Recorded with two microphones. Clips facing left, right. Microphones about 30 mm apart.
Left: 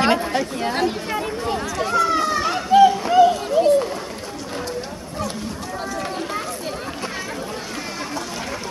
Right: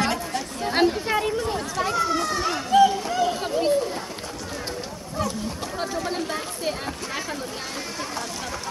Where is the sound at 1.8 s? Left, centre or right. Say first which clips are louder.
Left 4 dB; centre.